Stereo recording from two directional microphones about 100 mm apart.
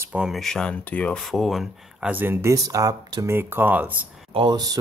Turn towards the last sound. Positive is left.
turn(degrees=-40)  # may be behind; listen again after turning